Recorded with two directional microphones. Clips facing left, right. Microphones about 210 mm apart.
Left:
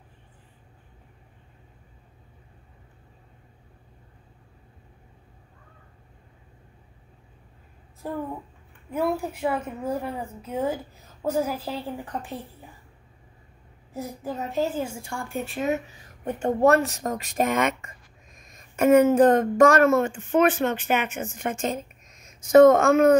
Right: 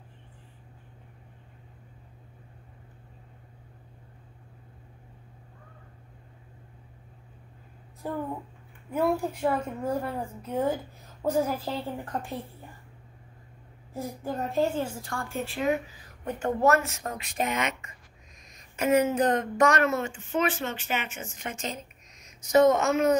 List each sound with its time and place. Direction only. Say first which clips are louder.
8.9 s a woman's voice: even; centre (ahead or behind)
13.9 s a woman's voice: left 1 dB; 5° left (ahead or behind); by 23.1 s 55° left (ahead or behind)